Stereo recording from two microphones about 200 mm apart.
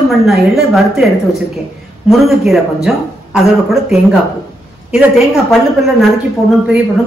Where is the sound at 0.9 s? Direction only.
Centre (ahead or behind).